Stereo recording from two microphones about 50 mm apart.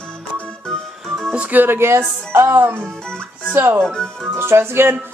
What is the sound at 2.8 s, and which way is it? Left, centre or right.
Speech, centre.